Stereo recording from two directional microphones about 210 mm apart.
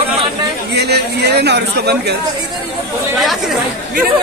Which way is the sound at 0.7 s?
50° right (ahead or behind).